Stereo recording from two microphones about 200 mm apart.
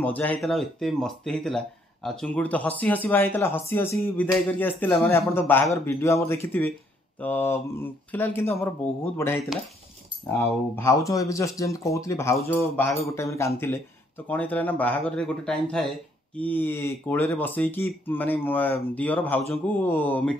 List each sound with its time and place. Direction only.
0.0 s speech: 10° left (ahead or behind)
13.1 s speech: 15° left (ahead or behind)